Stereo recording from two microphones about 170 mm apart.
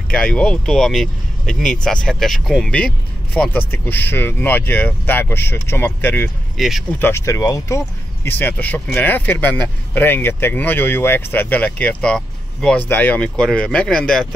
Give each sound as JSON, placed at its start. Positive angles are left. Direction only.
{"t": 0.1, "sound": "speech", "side_deg": 5}
{"t": 6.5, "sound": "speech", "side_deg": 0}
{"t": 7.0, "sound": "speech", "side_deg": 15}